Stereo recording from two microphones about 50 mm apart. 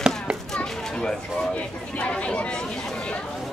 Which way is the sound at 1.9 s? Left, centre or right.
Left.